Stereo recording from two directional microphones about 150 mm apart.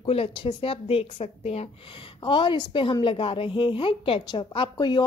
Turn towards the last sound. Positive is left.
turn(degrees=30)  # may be behind; listen again after turning